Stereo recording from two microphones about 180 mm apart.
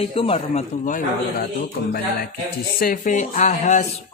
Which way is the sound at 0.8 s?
50° left (ahead or behind).